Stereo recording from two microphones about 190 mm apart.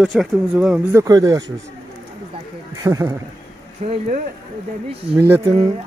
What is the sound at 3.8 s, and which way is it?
Speech, 35° right (ahead or behind).